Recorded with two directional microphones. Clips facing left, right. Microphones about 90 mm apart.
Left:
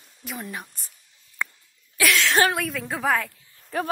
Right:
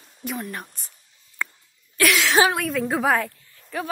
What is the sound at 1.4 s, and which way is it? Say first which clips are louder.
Cough: even; 15° left (ahead or behind).